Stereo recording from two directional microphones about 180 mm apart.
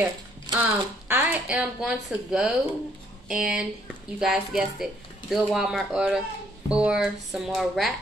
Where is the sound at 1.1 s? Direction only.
10° right (ahead or behind).